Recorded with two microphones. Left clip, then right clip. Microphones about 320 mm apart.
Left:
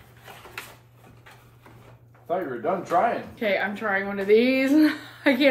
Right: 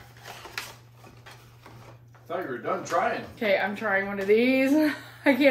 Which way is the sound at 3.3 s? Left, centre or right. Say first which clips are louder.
Even; centre.